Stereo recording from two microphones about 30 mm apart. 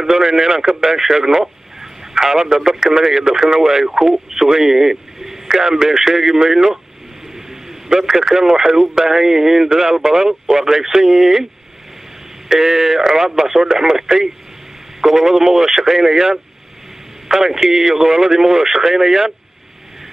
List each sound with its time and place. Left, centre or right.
0.0 s speech: centre
0.8 s radio: centre
2.4 s speech: centre
3.5 s speech: centre
8.1 s speech: right
12.4 s speech: centre